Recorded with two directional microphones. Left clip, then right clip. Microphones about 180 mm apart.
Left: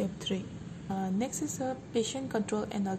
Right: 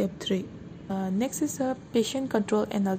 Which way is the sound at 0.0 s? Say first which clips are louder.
Right 6 dB; 25° right (ahead or behind).